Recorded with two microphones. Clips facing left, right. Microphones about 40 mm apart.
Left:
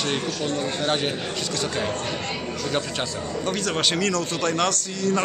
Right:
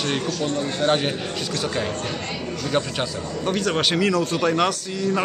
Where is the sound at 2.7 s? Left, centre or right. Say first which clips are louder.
Right 4 dB; centre.